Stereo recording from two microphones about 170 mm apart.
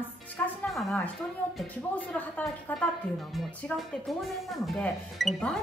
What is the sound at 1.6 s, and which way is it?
A woman's voice, 10° left (ahead or behind).